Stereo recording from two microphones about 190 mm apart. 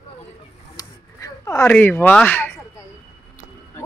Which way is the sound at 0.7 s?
20° left (ahead or behind).